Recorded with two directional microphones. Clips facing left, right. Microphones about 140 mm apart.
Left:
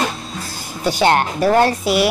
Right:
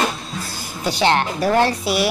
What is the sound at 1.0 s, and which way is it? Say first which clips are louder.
Speech: left 2 dB; 45° left (ahead or behind).